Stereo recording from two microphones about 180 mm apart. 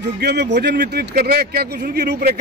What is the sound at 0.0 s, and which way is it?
Speech, 70° right (ahead or behind).